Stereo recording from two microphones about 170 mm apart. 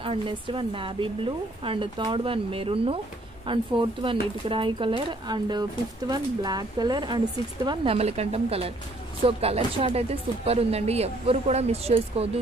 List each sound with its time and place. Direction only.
0.0 s speech: 30° right (ahead or behind)